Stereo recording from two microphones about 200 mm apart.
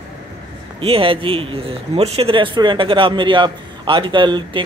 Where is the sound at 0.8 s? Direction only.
25° right (ahead or behind).